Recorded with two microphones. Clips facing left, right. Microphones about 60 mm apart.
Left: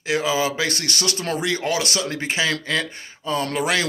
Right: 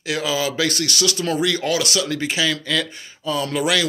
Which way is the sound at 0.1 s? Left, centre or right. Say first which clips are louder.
Left 1 dB; left.